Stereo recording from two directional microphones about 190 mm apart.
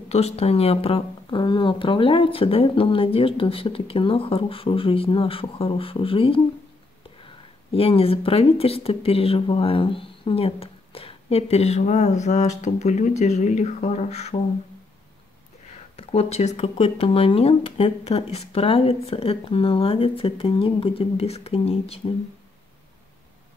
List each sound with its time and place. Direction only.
0.1 s speech: 35° left (ahead or behind)
7.7 s speech: 30° left (ahead or behind)
16.0 s speech: 30° left (ahead or behind)